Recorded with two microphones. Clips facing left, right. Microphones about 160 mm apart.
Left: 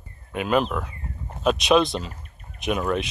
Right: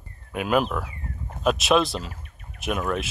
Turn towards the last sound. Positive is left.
turn(degrees=0)  # may be behind; listen again after turning